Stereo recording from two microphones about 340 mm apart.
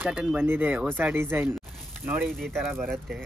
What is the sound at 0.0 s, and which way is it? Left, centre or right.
Speech, centre.